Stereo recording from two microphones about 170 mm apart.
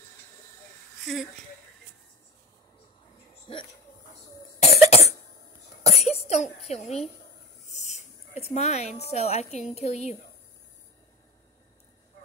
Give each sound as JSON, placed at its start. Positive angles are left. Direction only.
{"t": 4.6, "sound": "cough", "side_deg": 40}
{"t": 6.7, "sound": "speech", "side_deg": 40}